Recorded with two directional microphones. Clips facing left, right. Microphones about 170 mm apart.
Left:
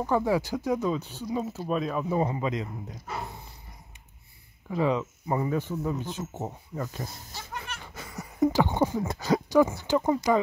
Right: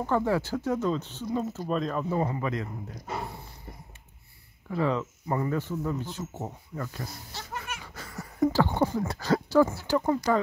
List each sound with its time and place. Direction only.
0.0 s speech: 10° left (ahead or behind)
4.6 s speech: 15° left (ahead or behind)